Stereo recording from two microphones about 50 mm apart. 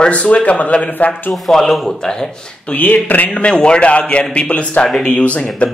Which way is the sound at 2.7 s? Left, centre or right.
Left.